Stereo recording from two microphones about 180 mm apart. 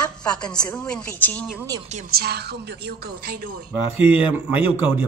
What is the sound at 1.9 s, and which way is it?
A woman's voice, 50° right (ahead or behind).